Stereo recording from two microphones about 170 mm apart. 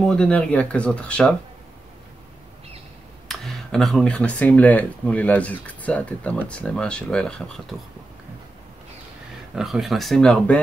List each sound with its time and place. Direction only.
0.0 s speech: 5° left (ahead or behind)
3.3 s speech: centre (ahead or behind)
9.6 s speech: centre (ahead or behind)